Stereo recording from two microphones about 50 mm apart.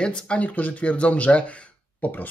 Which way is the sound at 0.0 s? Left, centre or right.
Centre.